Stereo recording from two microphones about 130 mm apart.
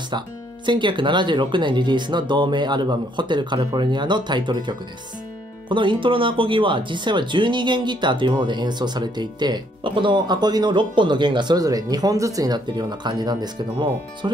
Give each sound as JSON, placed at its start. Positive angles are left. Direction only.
{"t": 0.1, "sound": "speech", "side_deg": -35}